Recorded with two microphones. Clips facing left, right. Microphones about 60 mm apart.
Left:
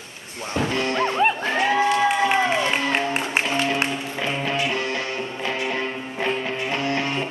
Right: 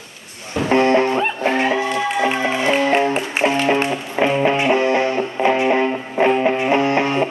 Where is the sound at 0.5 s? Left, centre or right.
Right.